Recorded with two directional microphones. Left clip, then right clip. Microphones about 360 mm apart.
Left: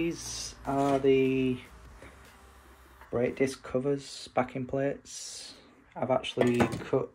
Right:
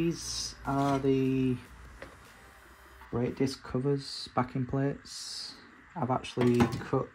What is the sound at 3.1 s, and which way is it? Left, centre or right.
Speech, centre.